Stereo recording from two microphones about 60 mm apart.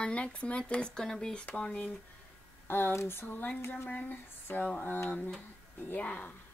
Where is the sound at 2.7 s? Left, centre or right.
Left.